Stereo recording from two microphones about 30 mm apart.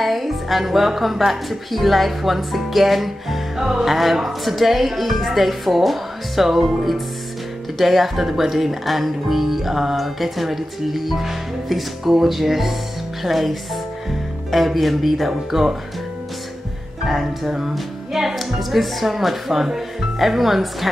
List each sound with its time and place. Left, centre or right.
0.0 s speech: centre
17.0 s speech: centre
17.5 s speech: centre
17.7 s music: centre
18.6 s speech: centre